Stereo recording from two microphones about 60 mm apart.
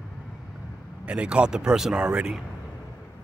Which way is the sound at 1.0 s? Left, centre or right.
Centre.